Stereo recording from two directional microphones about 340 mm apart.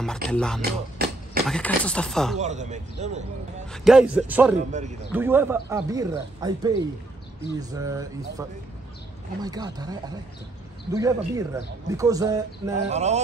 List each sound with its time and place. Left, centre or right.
0.0 s speech: centre
0.6 s a sound: right
1.5 s speech: centre
2.3 s speech: centre
3.7 s speech: centre